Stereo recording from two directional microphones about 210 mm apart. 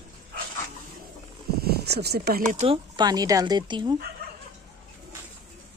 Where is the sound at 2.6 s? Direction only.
25° right (ahead or behind).